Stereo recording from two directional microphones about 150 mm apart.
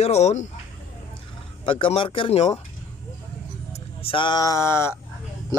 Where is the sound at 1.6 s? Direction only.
35° left (ahead or behind).